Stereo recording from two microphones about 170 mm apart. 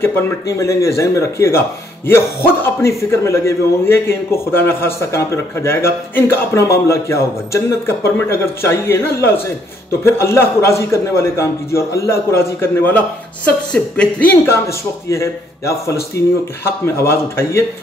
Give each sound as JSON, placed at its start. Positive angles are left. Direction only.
{"t": 0.0, "sound": "a man's voice", "side_deg": 15}
{"t": 2.6, "sound": "a man's voice", "side_deg": 15}